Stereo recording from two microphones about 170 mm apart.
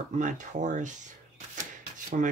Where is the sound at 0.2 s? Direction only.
45° right (ahead or behind).